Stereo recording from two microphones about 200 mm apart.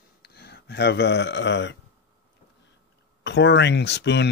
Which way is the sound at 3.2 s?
60° left (ahead or behind).